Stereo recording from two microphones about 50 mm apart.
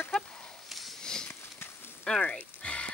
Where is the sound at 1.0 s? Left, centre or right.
Centre.